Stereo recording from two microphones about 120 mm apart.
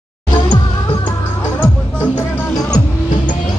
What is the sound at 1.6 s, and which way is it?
Music, 15° left (ahead or behind).